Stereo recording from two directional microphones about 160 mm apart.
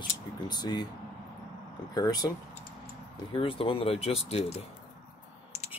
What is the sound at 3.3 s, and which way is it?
Speech, 35° left (ahead or behind).